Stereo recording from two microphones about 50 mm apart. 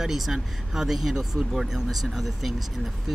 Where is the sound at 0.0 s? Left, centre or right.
Centre.